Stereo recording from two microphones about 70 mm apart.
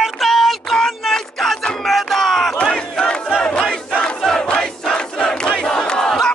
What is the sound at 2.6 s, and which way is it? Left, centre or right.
Battle cry, centre.